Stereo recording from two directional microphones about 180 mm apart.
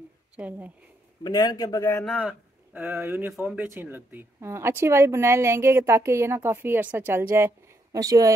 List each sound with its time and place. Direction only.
0.4 s speech: 10° right (ahead or behind)
1.2 s a man's voice: 20° left (ahead or behind)
2.0 s speech: 5° right (ahead or behind)